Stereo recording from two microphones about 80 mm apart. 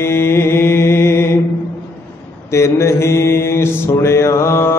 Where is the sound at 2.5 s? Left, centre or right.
Left.